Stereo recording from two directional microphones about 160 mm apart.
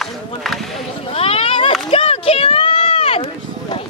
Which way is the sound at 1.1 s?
35° left (ahead or behind).